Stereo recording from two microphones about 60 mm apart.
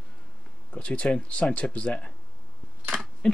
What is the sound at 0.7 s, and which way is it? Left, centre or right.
Speech, left.